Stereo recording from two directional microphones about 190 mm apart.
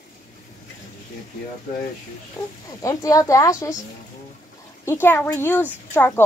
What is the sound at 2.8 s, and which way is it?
A woman's voice, 15° left (ahead or behind).